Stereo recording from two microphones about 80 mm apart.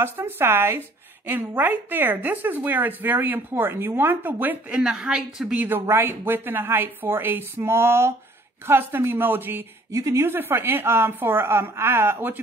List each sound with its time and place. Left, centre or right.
0.0 s a woman's voice: right
4.7 s a woman's voice: centre
5.7 s a woman's voice: right
9.8 s a woman's voice: right